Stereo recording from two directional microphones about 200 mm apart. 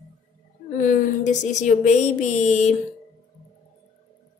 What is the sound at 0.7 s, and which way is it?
Speech, 40° left (ahead or behind).